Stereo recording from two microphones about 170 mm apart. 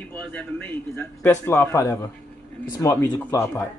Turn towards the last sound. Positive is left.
turn(degrees=15)  # may be behind; listen again after turning